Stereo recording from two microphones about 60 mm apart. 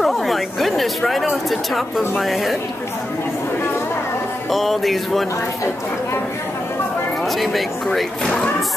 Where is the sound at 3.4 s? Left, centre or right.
Left.